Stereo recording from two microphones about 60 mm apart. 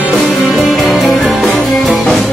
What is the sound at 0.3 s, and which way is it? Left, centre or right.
Music, centre.